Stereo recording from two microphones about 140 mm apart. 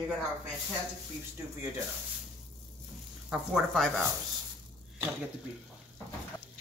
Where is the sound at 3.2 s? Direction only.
5° right (ahead or behind).